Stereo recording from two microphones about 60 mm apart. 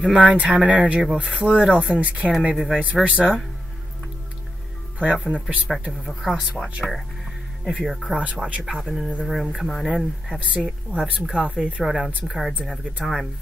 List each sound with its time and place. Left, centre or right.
0.0 s speech: centre
2.5 s speech: centre
2.8 s speech: right
4.9 s speech: right
5.7 s speech: centre
8.2 s speech: right
8.6 s speech: centre
10.5 s speech: right
12.3 s speech: centre